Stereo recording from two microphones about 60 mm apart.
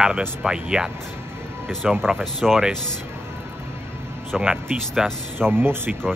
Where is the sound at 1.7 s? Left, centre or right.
Centre.